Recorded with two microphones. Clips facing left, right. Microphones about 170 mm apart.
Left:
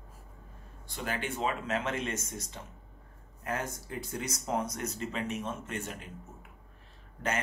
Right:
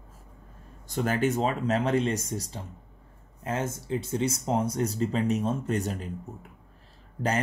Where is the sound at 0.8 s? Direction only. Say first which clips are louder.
Right 10 dB; 45° right (ahead or behind).